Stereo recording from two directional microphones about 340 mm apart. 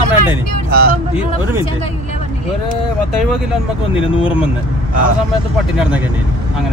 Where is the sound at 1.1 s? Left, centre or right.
Centre.